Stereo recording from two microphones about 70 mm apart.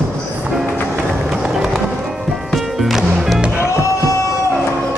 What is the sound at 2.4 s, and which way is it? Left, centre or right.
Music, centre.